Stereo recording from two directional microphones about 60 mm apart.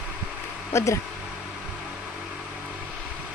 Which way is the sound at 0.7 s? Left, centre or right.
Left.